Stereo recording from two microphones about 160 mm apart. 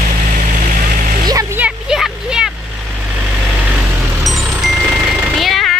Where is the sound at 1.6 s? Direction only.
5° right (ahead or behind).